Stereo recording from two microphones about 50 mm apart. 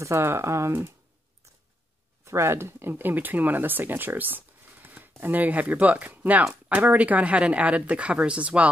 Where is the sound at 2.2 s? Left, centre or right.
Right.